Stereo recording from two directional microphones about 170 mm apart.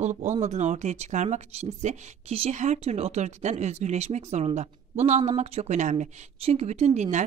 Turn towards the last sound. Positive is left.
turn(degrees=-45)  # may be behind; listen again after turning